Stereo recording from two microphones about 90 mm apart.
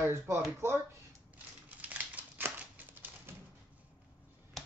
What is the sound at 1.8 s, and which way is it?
Typewriter, 15° right (ahead or behind).